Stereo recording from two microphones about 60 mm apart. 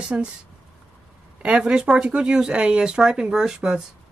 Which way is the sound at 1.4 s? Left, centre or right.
Centre.